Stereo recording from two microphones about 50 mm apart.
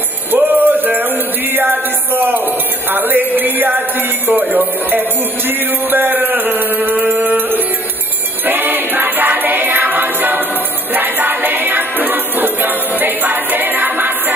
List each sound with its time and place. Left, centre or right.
0.3 s music: right
4.3 s chant: right
7.0 s music: right